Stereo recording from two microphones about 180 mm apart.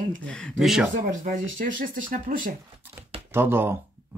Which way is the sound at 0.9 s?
45° right (ahead or behind).